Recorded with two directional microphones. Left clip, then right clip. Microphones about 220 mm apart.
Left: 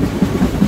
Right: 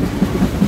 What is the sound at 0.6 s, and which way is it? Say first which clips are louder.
Thunder: left 1 dB; 20° right (ahead or behind).